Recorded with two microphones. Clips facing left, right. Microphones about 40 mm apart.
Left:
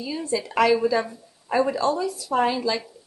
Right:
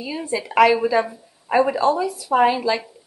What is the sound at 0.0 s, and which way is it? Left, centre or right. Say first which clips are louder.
A woman's voice: right 1 dB; right.